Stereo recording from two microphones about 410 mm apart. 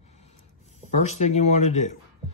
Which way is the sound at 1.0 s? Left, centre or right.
Centre.